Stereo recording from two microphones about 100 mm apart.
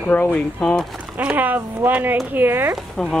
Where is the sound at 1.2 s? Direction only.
15° right (ahead or behind).